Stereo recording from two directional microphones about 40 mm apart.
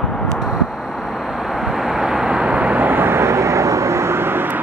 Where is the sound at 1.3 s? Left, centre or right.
Centre.